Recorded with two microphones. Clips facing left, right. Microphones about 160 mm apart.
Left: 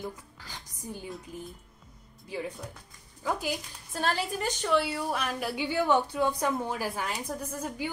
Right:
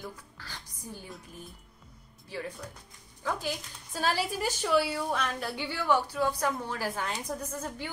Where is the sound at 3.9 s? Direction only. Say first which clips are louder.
Even; 5° right (ahead or behind).